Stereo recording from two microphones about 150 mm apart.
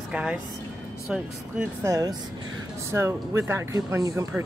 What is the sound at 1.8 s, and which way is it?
Speech, 25° right (ahead or behind).